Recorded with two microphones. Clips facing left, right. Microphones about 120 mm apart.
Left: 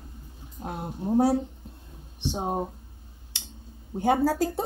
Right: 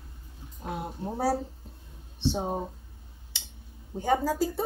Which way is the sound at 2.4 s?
50° left (ahead or behind).